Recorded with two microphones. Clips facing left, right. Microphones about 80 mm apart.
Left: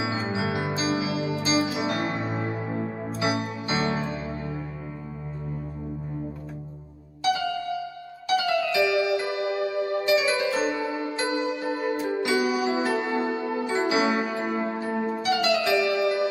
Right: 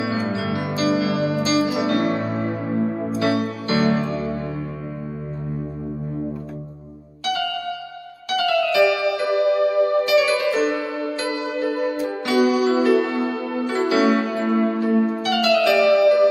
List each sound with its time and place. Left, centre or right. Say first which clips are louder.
0.0 s music: right 4 dB; left
8.3 s music: right 4 dB; left